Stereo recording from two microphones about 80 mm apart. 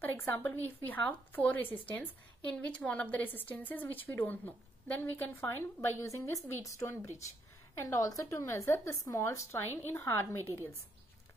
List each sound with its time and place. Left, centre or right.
0.0 s a woman's voice: left